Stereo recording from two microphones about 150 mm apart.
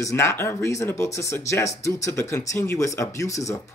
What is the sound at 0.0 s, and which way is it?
Speech, 20° left (ahead or behind).